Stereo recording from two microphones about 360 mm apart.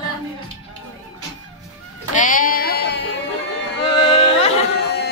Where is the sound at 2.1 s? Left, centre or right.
Left.